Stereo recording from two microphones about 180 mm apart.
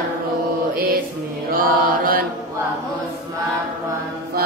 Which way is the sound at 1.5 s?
55° right (ahead or behind).